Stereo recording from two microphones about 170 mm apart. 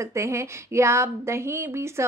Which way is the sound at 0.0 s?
15° right (ahead or behind).